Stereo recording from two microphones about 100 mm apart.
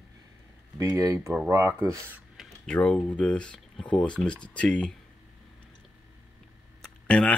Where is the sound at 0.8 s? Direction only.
35° right (ahead or behind).